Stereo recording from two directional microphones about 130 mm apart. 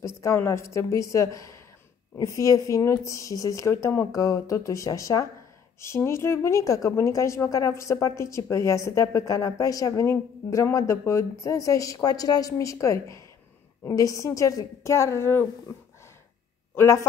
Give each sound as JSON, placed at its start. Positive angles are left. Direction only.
{"t": 0.0, "sound": "a woman's voice", "side_deg": 25}
{"t": 16.7, "sound": "a woman's voice", "side_deg": 20}